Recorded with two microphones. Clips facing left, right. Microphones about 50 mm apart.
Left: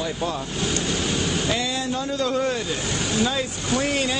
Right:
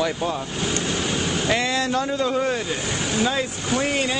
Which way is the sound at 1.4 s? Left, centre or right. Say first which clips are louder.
Right 3 dB; right.